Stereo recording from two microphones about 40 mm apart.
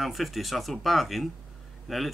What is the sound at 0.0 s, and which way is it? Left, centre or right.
Speech, centre.